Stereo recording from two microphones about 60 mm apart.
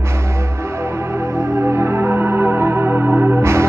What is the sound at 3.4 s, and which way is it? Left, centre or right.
Music, right.